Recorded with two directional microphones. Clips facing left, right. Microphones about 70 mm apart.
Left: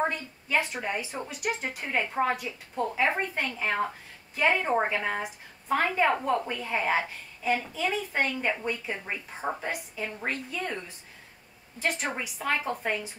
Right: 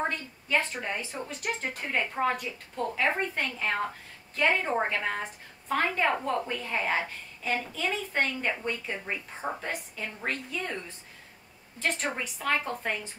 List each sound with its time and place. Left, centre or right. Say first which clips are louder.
0.0 s a woman's voice: left 2 dB; centre